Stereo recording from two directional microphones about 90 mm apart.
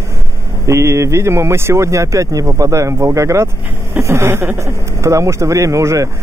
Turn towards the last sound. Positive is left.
turn(degrees=-35)  # may be behind; listen again after turning